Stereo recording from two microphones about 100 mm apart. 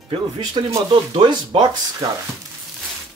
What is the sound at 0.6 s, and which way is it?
Speech, 50° right (ahead or behind).